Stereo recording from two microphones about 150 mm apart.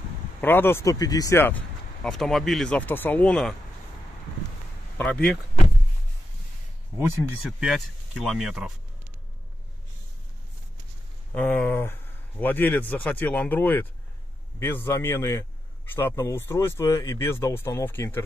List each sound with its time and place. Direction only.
0.4 s speech: 15° left (ahead or behind)
2.0 s speech: centre (ahead or behind)
4.9 s speech: 5° left (ahead or behind)
7.4 s speech: centre (ahead or behind)
11.3 s speech: 10° left (ahead or behind)